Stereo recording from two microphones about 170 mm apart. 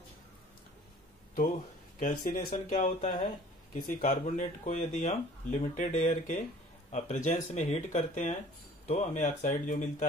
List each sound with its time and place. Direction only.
2.0 s speech: 55° left (ahead or behind)